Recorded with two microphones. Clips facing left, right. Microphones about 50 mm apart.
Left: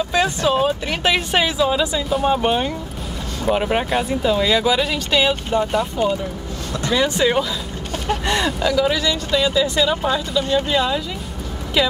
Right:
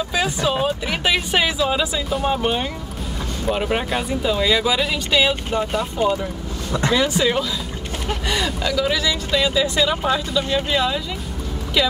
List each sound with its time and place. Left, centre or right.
0.1 s speech: centre